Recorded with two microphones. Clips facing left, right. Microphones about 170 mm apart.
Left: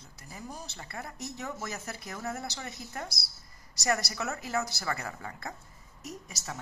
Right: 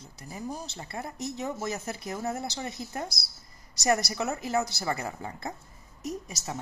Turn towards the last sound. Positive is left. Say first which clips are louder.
# right 6 dB
turn(degrees=-20)  # may be behind; listen again after turning